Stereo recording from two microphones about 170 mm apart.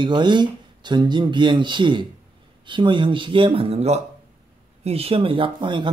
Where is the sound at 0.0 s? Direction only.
25° right (ahead or behind).